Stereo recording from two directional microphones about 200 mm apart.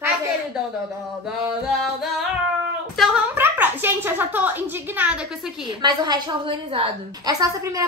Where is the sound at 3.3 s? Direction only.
10° right (ahead or behind).